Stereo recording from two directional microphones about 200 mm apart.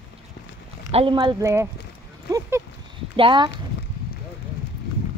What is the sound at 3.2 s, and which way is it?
Speech, 25° right (ahead or behind).